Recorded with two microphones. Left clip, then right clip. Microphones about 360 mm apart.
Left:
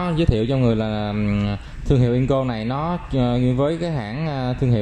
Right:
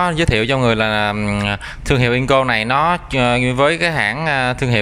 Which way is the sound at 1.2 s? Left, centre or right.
Centre.